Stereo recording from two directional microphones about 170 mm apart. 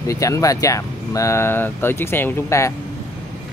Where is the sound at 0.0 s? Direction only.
20° left (ahead or behind).